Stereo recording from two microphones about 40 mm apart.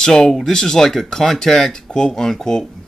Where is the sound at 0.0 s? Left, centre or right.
Centre.